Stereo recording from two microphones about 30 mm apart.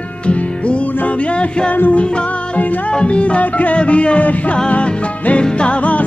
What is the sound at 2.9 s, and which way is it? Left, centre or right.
Music, left.